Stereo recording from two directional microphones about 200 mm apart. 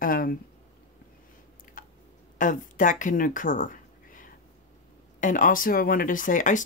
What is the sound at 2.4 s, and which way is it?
Speech, 40° left (ahead or behind).